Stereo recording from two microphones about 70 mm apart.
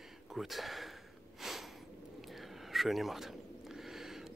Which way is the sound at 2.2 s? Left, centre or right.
Centre.